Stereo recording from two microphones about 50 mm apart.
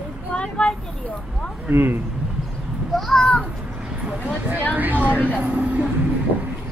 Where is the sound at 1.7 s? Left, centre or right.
Right.